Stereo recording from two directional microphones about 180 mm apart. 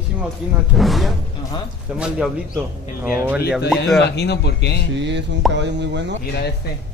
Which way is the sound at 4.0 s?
70° left (ahead or behind).